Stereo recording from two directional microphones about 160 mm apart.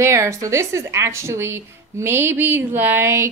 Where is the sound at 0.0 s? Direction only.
15° right (ahead or behind).